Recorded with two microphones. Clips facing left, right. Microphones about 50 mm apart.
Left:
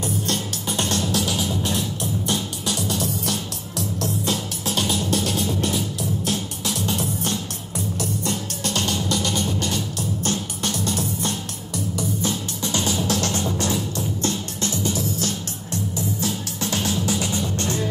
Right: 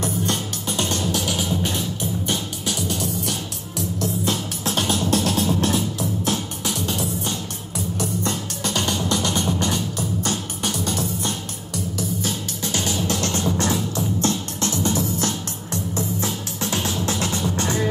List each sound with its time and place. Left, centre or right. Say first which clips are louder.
0.8 s music: left 1 dB; right
4.3 s music: right 1 dB; right
6.2 s music: right 1 dB; right
8.0 s music: right 2 dB; right
12.7 s music: left 1 dB; right
16.5 s music: even; centre
17.1 s music: even; centre